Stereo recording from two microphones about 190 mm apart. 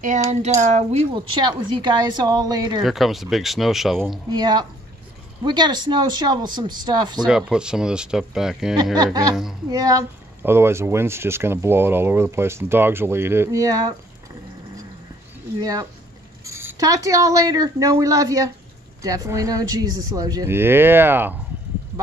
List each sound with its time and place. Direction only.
0.0 s speech: 40° right (ahead or behind)
1.1 s speech: 25° right (ahead or behind)
2.8 s speech: centre (ahead or behind)
4.3 s speech: 20° right (ahead or behind)
7.2 s speech: 5° right (ahead or behind)
8.9 s speech: 20° right (ahead or behind)
15.6 s speech: 20° right (ahead or behind)